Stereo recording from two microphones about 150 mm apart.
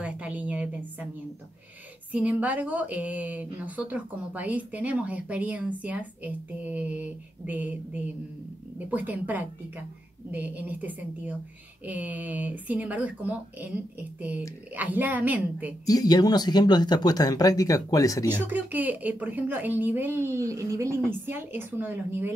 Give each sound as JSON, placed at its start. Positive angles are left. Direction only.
{"t": 0.0, "sound": "a sound", "side_deg": -10}
{"t": 2.1, "sound": "speech", "side_deg": -10}
{"t": 15.8, "sound": "speech", "side_deg": 25}
{"t": 18.5, "sound": "speech", "side_deg": -10}